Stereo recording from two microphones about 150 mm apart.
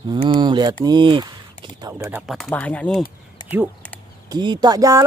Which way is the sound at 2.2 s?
Centre (ahead or behind).